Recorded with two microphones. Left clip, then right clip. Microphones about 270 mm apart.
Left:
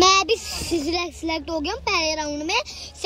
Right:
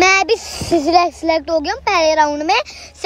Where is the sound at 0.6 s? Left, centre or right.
Right.